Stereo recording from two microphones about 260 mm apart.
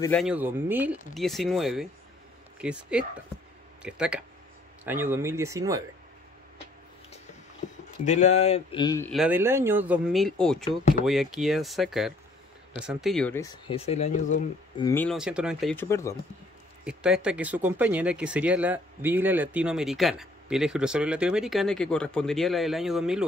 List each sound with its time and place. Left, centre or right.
0.0 s speech: centre
8.0 s speech: left
9.1 s speech: centre
13.7 s speech: left
14.8 s speech: centre
15.1 s speech: centre
15.7 s speech: centre
16.8 s speech: centre